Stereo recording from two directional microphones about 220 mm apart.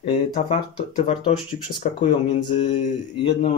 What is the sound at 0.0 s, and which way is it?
Speech, 25° left (ahead or behind).